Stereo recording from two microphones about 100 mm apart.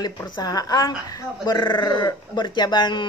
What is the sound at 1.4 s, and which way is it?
Speech, 50° left (ahead or behind).